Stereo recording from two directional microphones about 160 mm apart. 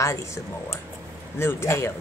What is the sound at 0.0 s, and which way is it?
Speech, 20° left (ahead or behind).